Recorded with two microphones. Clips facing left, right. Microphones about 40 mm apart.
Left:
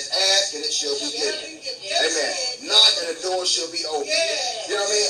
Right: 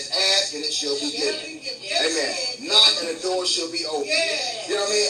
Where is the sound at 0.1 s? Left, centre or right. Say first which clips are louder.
Left 1 dB; right.